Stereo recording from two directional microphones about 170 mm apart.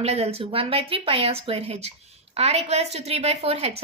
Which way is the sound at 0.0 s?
35° right (ahead or behind).